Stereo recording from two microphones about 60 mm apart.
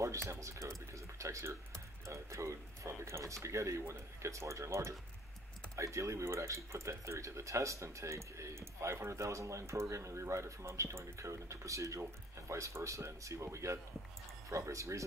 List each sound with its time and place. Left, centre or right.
0.0 s speech: right